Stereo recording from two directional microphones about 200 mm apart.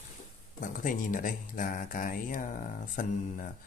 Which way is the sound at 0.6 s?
40° left (ahead or behind).